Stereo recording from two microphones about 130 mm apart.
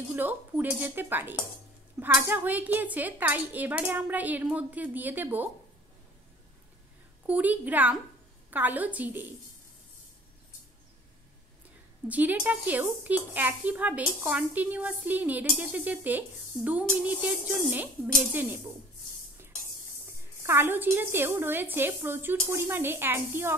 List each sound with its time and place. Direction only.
0.1 s speech: 15° right (ahead or behind)
7.2 s speech: 10° right (ahead or behind)
12.1 s speech: 10° right (ahead or behind)
20.4 s speech: 15° right (ahead or behind)